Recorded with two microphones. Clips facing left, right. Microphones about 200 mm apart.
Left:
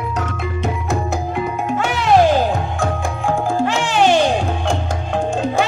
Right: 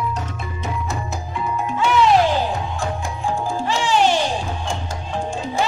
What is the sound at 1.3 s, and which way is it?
Music, 60° left (ahead or behind).